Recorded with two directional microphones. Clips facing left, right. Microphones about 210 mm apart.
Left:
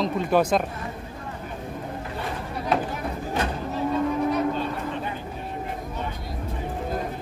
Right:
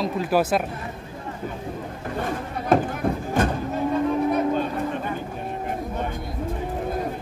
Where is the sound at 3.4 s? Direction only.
50° right (ahead or behind).